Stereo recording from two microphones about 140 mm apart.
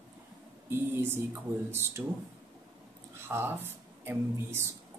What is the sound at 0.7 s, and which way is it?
Speech, 15° right (ahead or behind).